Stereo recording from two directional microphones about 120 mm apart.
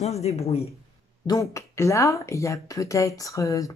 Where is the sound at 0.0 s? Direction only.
65° left (ahead or behind).